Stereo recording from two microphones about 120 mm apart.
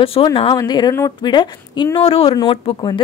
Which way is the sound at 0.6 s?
35° left (ahead or behind).